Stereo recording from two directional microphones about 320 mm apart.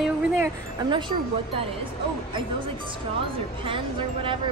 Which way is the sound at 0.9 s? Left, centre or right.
Centre.